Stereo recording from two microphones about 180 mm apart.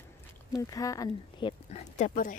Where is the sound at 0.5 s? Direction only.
20° left (ahead or behind); by 2.3 s 45° left (ahead or behind).